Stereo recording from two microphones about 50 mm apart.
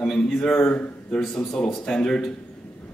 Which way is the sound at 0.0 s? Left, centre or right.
Centre.